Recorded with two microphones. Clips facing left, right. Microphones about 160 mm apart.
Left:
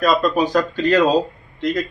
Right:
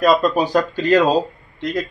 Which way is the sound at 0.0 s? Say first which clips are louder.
Right 1 dB; 15° right (ahead or behind).